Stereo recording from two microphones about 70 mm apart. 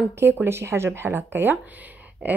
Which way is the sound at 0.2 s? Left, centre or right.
Right.